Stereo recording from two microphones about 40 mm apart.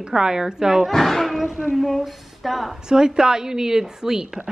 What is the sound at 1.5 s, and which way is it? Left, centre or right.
Speech, centre.